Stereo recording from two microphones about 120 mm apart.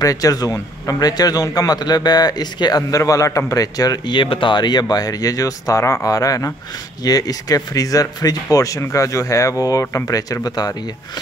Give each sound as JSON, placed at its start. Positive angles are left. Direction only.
{"t": 0.0, "sound": "a man's voice", "side_deg": 30}